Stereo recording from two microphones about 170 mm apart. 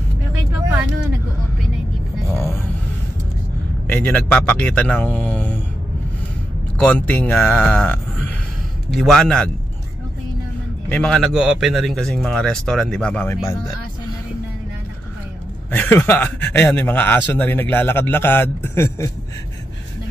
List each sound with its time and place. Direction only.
2.3 s a sound: 15° left (ahead or behind)
3.9 s a man's voice: 10° left (ahead or behind)
6.8 s a man's voice: 10° left (ahead or behind)
10.9 s speech: 5° left (ahead or behind)
15.7 s a man's voice: 10° left (ahead or behind)